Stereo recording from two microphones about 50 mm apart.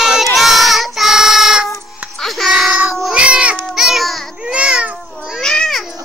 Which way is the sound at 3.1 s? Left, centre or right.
Right.